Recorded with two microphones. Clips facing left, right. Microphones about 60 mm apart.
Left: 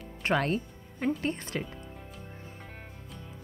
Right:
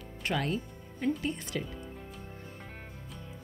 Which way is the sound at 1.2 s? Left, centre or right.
Left.